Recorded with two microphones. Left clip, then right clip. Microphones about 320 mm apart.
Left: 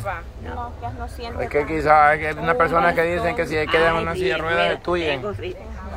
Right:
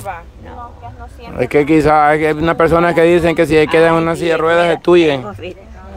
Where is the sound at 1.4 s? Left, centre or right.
Right.